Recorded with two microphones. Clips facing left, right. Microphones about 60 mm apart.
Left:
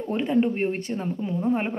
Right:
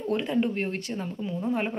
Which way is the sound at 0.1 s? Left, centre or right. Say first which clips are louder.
Left 3 dB; left.